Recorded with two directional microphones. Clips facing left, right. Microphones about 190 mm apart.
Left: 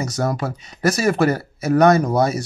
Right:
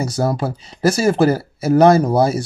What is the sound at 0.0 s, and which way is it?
Speech, 30° right (ahead or behind).